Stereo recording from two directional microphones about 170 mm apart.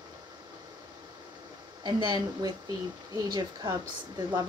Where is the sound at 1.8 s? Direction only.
25° right (ahead or behind).